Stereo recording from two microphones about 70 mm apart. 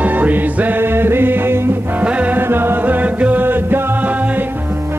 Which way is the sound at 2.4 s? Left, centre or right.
Right.